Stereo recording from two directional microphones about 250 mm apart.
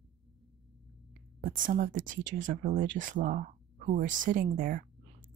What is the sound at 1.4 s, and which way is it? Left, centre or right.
Speech, right.